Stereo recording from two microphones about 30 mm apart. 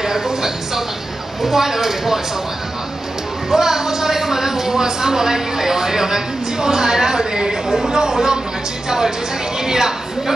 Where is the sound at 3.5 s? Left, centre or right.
Centre.